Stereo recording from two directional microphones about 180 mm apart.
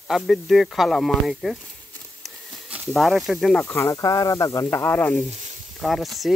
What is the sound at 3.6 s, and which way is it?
Speech, 15° left (ahead or behind).